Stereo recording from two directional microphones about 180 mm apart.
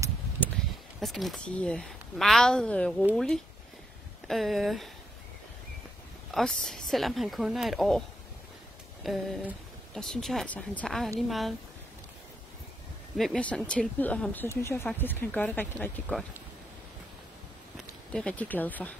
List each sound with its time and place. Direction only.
0.6 s a sound: 5° left (ahead or behind)
1.0 s speech: centre (ahead or behind)
4.3 s speech: centre (ahead or behind)
6.3 s speech: centre (ahead or behind)
9.0 s speech: centre (ahead or behind)
13.2 s speech: 5° left (ahead or behind)
18.1 s speech: 5° left (ahead or behind)